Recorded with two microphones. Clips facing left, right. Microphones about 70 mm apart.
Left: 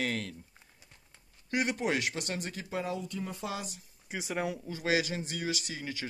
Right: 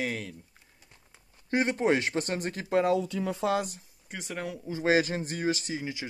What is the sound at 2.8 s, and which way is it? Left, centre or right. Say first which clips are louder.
Speech: right 9 dB; right.